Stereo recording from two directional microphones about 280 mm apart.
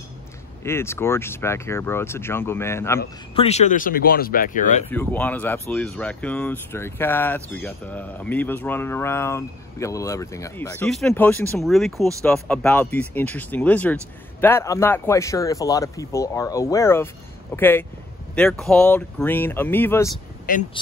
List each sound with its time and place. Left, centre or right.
0.7 s speech: centre
3.3 s speech: left
4.9 s speech: centre
20.5 s speech: left